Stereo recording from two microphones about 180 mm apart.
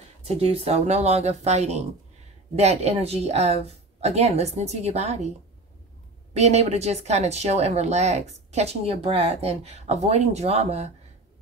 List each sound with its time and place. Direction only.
0.2 s speech: 35° right (ahead or behind)
6.3 s speech: 40° right (ahead or behind)